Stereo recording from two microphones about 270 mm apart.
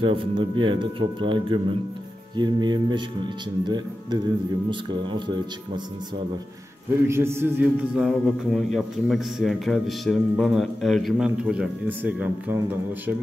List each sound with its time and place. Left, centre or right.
0.0 s speech: centre
7.1 s a man's voice: centre